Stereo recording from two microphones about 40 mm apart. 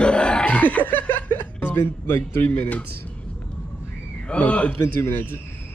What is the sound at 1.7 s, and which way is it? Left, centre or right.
Speech, left.